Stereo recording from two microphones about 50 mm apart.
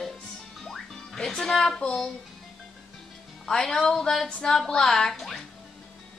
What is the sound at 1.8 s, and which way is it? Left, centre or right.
Speech, left.